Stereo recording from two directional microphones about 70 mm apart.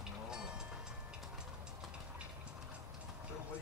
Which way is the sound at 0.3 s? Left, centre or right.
Centre.